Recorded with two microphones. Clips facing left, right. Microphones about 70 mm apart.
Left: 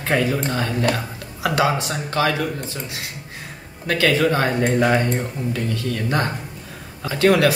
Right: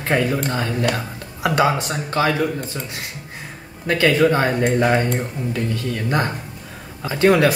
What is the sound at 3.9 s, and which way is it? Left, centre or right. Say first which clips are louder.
Speech: right 2 dB; centre.